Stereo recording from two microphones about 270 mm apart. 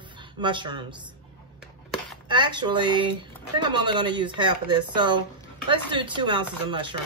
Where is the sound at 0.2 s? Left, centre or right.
Centre.